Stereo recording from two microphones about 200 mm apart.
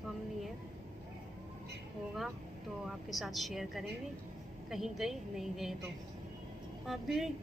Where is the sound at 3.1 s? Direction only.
Centre (ahead or behind).